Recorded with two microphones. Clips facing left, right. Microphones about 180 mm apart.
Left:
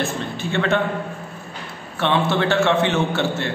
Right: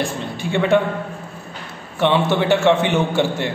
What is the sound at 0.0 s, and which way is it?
Speech, 15° right (ahead or behind).